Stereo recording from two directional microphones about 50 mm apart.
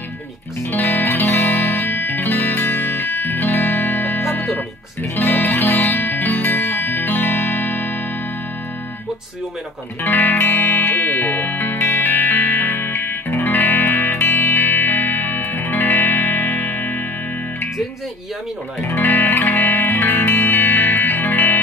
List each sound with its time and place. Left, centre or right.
0.9 s music: left
5.0 s music: left
10.1 s music: left
18.8 s speech: left
19.0 s music: left